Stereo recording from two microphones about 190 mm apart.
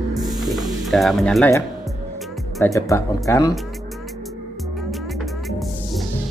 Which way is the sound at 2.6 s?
15° left (ahead or behind).